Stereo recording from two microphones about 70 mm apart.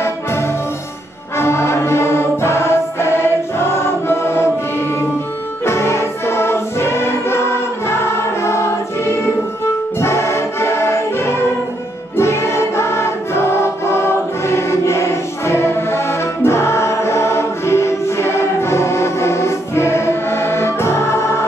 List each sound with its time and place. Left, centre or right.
0.0 s music: left